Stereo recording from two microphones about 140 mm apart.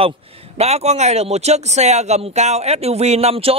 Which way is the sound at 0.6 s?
50° right (ahead or behind).